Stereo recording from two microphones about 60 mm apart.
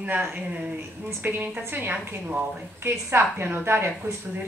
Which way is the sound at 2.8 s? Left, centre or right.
Right.